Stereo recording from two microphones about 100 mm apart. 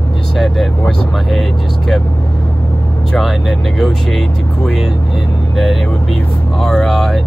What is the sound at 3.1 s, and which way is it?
Speech, 5° left (ahead or behind).